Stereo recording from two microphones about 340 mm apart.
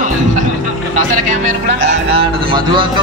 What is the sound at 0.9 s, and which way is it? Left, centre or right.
Speech, right.